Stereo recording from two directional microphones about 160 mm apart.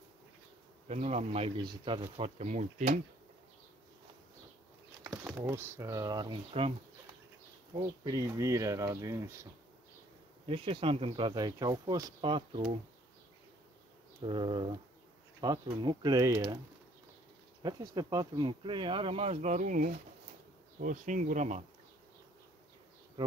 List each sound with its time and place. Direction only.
0.8 s speech: 45° right (ahead or behind)
1.6 s speech: 30° right (ahead or behind); by 3.0 s 45° right (ahead or behind)
5.0 s a sound: 10° right (ahead or behind)
5.4 s speech: 15° right (ahead or behind)
7.8 s speech: 20° right (ahead or behind)
10.4 s speech: 35° right (ahead or behind)
14.2 s speech: 30° right (ahead or behind)
17.6 s speech: 25° right (ahead or behind); by 21.6 s 50° right (ahead or behind)